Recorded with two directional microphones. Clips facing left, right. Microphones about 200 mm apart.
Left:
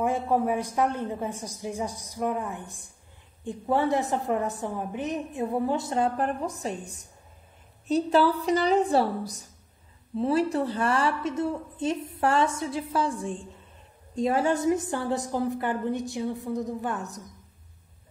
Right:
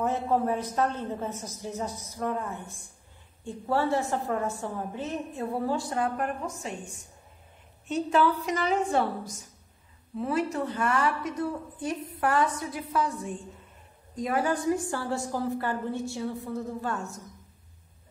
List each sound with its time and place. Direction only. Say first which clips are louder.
0.0 s a woman's voice: left 1 dB; 10° left (ahead or behind); by 6.7 s 35° left (ahead or behind)
7.9 s a woman's voice: left 3 dB; 35° left (ahead or behind); by 17.2 s 15° left (ahead or behind)